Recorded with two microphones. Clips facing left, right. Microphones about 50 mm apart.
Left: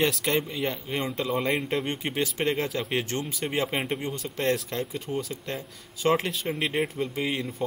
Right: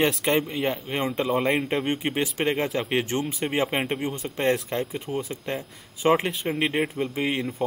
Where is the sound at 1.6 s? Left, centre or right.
Centre.